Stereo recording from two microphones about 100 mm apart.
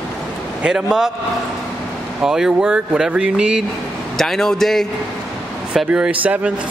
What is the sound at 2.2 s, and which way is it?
Speech, 5° right (ahead or behind).